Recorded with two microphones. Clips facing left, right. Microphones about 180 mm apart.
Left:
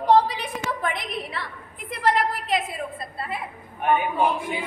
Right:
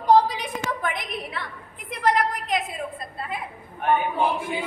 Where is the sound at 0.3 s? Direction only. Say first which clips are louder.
Even; centre (ahead or behind).